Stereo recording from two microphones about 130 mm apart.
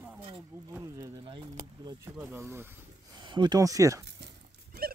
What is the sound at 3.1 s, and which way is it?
Speech, 35° right (ahead or behind).